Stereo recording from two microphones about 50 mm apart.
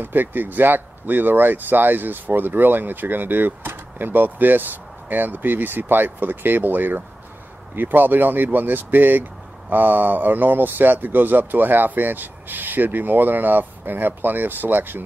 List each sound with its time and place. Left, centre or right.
0.0 s speech: right